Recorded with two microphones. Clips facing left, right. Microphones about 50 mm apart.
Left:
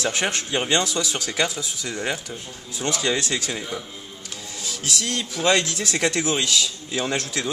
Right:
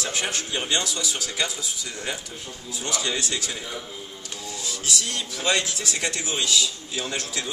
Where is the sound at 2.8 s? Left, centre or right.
Left.